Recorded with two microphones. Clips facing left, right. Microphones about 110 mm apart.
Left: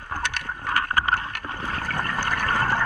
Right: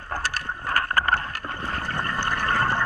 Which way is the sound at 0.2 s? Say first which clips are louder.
Even; 35° right (ahead or behind).